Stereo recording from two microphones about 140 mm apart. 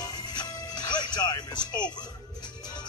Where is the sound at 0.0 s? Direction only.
30° left (ahead or behind).